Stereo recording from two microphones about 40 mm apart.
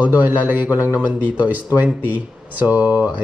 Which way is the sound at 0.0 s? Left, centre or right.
Right.